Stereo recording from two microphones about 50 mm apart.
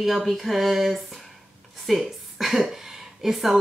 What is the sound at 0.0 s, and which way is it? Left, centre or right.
A woman's voice, centre.